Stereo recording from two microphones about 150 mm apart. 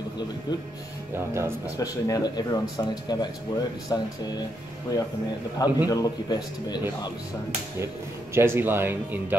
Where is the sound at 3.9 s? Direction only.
25° left (ahead or behind).